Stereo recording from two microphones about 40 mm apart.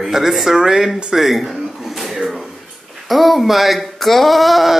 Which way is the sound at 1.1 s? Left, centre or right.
Centre.